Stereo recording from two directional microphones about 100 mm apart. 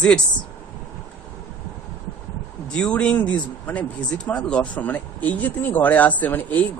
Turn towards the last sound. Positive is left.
turn(degrees=15)  # may be behind; listen again after turning